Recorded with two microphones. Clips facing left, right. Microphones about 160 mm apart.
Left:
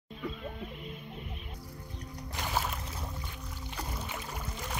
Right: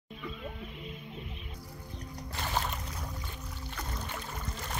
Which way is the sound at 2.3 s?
10° left (ahead or behind).